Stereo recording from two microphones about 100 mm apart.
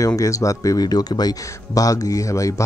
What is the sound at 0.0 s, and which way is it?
Speech, 35° left (ahead or behind).